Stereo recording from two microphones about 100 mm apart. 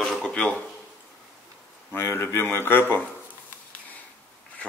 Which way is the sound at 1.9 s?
25° left (ahead or behind).